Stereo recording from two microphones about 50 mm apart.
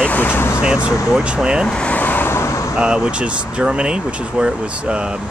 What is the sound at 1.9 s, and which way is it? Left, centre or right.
Vehicle, left.